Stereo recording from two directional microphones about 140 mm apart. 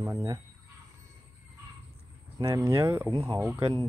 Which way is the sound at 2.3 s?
25° right (ahead or behind).